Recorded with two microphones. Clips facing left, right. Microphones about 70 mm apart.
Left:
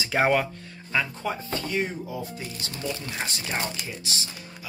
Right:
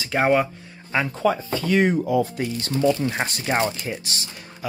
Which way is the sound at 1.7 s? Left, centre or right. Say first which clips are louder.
Right 12 dB; right.